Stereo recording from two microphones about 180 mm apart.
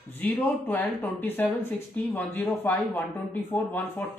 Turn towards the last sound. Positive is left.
turn(degrees=10)  # may be behind; listen again after turning